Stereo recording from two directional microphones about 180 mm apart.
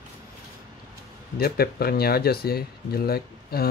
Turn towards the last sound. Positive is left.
turn(degrees=60)  # may be behind; listen again after turning